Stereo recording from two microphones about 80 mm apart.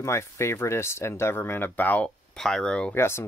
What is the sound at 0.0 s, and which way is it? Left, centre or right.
Speech, left.